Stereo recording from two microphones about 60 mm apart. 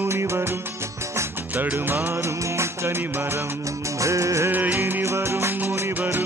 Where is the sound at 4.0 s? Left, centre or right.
Right.